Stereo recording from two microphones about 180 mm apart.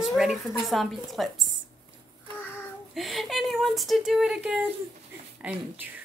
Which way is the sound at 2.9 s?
Centre (ahead or behind).